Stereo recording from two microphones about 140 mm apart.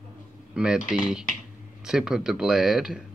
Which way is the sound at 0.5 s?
5° right (ahead or behind).